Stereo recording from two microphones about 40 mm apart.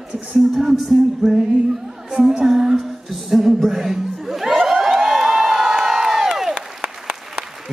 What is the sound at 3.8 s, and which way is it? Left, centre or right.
Crowd, centre.